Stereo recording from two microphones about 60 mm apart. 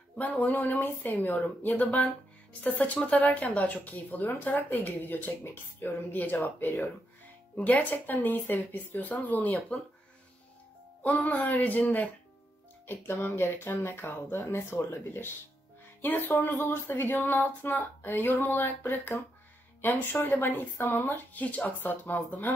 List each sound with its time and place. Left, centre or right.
0.2 s speech: left
11.0 s speech: left
21.4 s speech: left